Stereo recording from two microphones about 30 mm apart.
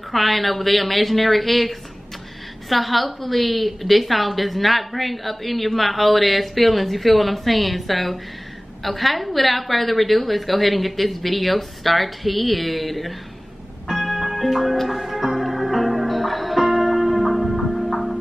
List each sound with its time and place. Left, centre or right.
0.1 s a woman's voice: centre
14.1 s music: centre